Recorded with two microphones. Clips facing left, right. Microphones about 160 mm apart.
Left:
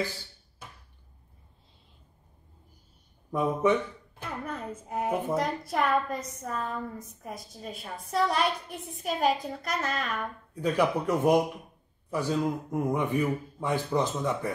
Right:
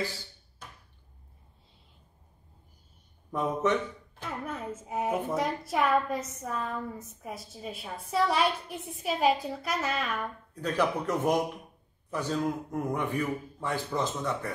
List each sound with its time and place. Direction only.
3.3 s speech: 10° left (ahead or behind)
4.2 s a child's voice: 5° right (ahead or behind)
10.6 s a child's voice: 10° left (ahead or behind)
12.9 s speech: 20° left (ahead or behind)